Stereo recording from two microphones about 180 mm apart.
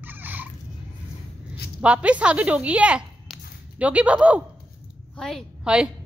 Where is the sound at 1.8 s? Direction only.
5° right (ahead or behind).